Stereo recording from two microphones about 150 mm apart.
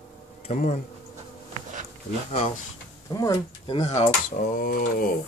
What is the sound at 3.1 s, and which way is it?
Speech, 25° left (ahead or behind).